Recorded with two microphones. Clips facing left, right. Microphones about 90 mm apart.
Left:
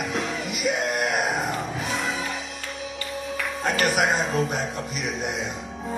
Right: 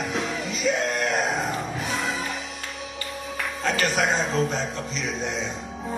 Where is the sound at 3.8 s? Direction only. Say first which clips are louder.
Left 2 dB; 5° left (ahead or behind).